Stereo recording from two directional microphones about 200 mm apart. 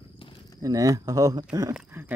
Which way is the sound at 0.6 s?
15° right (ahead or behind).